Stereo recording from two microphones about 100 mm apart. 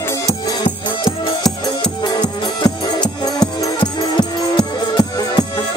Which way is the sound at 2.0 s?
45° left (ahead or behind).